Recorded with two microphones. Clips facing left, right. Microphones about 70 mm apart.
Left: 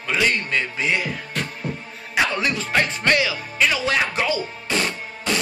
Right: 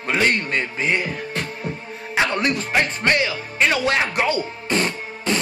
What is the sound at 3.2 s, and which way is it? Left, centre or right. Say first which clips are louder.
Speech: right 1 dB; right.